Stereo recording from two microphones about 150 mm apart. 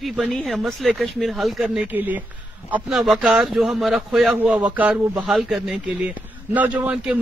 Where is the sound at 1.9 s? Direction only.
10° right (ahead or behind).